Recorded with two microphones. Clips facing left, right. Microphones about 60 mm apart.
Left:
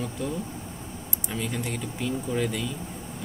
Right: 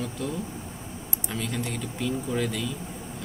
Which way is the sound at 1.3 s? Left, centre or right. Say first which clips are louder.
Even; centre.